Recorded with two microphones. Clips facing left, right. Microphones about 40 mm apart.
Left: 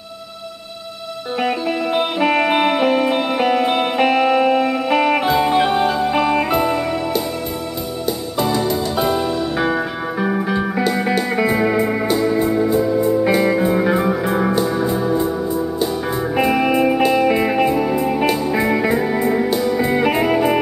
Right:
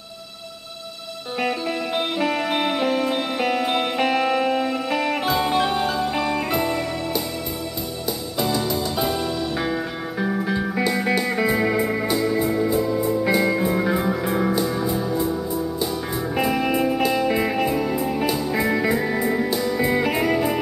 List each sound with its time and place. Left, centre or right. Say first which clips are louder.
1.4 s music: left 4 dB; centre
2.2 s music: left 9 dB; left
5.2 s music: left 5 dB; centre
8.4 s music: left 4 dB; centre; by 10.6 s left
10.8 s music: left 2 dB; centre